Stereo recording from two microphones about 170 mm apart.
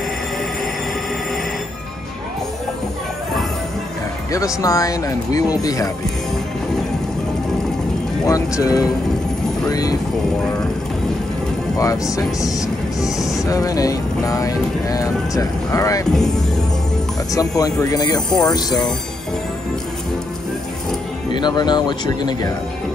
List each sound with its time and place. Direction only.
4.3 s speech: 20° left (ahead or behind)
8.3 s speech: 20° left (ahead or behind)
11.8 s speech: 20° left (ahead or behind)
13.0 s speech: centre (ahead or behind)
13.4 s speech: 20° left (ahead or behind)
17.3 s speech: 20° left (ahead or behind)
21.3 s speech: 25° left (ahead or behind)